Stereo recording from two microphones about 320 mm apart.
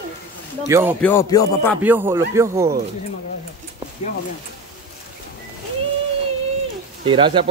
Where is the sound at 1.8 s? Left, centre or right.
Centre.